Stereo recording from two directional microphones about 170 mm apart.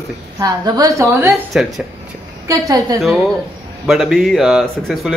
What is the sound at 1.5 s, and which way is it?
Speech, 5° right (ahead or behind).